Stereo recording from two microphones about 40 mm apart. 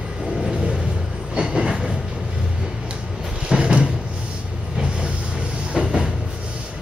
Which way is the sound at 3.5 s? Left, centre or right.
Right.